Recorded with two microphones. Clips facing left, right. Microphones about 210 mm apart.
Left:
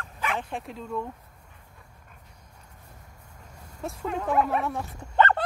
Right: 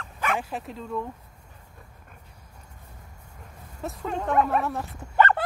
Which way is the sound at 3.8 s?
Centre (ahead or behind).